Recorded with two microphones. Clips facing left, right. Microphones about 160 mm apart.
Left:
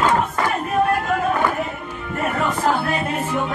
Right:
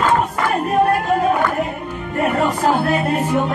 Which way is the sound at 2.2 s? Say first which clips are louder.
Right 4 dB; 40° right (ahead or behind).